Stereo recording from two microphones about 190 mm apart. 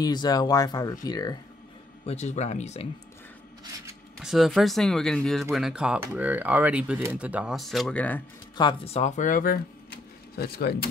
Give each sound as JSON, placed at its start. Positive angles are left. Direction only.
{"t": 0.0, "sound": "speech", "side_deg": 20}
{"t": 2.0, "sound": "speech", "side_deg": 35}
{"t": 4.2, "sound": "speech", "side_deg": 0}
{"t": 8.5, "sound": "speech", "side_deg": 25}